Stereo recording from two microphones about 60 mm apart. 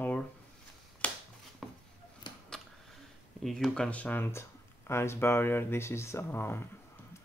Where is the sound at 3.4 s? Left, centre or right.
Centre.